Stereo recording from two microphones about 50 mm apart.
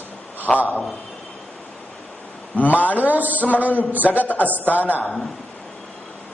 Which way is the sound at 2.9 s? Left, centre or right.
Right.